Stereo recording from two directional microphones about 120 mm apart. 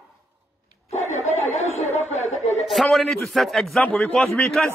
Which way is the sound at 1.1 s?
65° left (ahead or behind).